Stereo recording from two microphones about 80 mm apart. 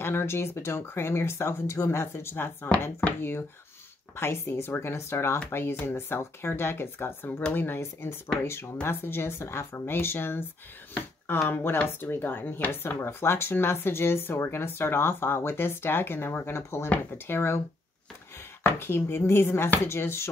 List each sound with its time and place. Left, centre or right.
0.0 s speech: left
18.6 s speech: left